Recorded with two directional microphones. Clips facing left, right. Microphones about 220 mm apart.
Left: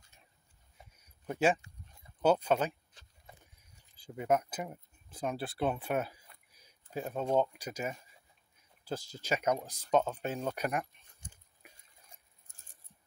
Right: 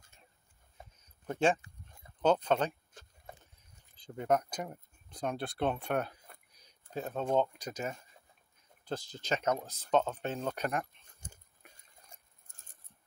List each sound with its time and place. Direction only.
0.9 s a sound: 10° left (ahead or behind)
2.2 s speech: 10° left (ahead or behind)
2.9 s keys jangling: 50° right (ahead or behind)
3.9 s speech: 10° left (ahead or behind)
11.2 s a sound: 40° right (ahead or behind)
12.1 s patter: 50° right (ahead or behind)